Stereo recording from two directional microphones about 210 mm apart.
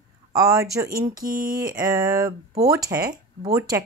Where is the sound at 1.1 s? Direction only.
40° right (ahead or behind).